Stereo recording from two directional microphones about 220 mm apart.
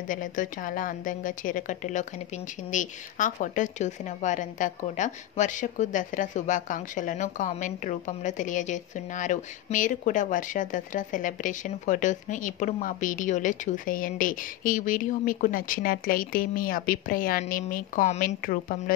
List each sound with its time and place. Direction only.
0.1 s speech: 35° left (ahead or behind)